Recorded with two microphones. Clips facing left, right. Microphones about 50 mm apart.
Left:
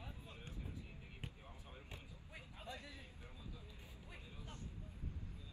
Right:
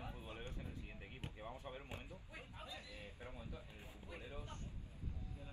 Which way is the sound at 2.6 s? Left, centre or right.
Left.